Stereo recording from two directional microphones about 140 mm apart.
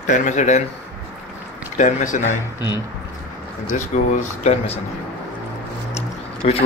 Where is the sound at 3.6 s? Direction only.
60° left (ahead or behind).